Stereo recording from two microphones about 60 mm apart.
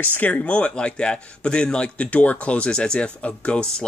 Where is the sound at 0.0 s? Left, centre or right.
Left.